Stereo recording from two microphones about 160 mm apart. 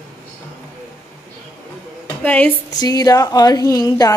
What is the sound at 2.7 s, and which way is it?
A woman's voice, 25° left (ahead or behind).